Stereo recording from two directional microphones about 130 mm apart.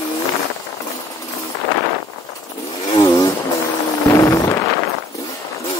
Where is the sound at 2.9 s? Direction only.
25° left (ahead or behind).